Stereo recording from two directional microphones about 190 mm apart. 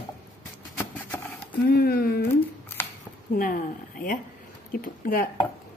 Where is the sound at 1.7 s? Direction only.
55° left (ahead or behind).